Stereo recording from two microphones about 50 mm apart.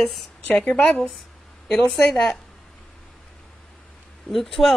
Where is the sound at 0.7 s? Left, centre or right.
Left.